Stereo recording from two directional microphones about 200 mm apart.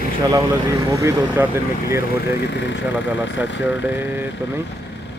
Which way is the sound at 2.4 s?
60° left (ahead or behind).